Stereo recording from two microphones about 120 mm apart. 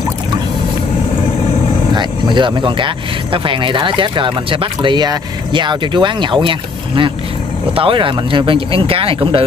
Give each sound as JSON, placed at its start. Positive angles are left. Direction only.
{"t": 2.0, "sound": "speech", "side_deg": -40}
{"t": 7.7, "sound": "speech", "side_deg": -50}